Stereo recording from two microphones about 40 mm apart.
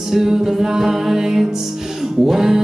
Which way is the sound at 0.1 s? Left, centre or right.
Centre.